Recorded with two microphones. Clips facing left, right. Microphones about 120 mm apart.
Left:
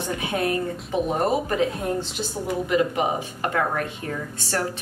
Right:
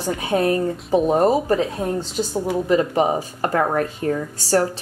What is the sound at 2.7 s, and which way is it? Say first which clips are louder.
A woman's voice: right 4 dB; 35° right (ahead or behind).